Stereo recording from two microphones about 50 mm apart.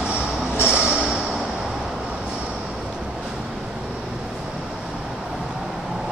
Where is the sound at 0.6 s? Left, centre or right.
Right.